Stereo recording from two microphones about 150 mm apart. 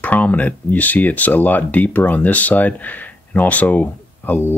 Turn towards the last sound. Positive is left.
turn(degrees=10)  # may be behind; listen again after turning